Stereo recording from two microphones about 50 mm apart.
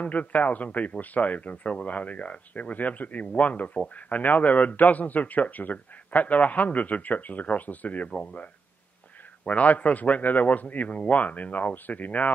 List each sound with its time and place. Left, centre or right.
0.0 s a man's voice: left